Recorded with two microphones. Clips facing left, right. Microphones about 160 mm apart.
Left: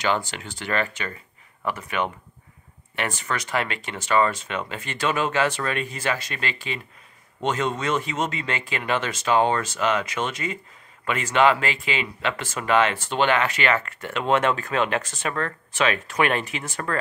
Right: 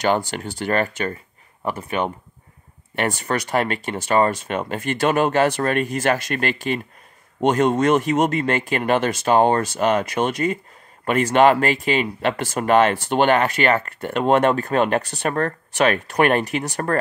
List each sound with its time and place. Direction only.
0.3 s speech: 45° right (ahead or behind)
1.8 s speech: 30° right (ahead or behind)
3.4 s speech: 45° right (ahead or behind)
15.0 s speech: 55° right (ahead or behind)